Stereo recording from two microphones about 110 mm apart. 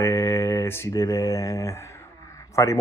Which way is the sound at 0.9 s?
35° left (ahead or behind).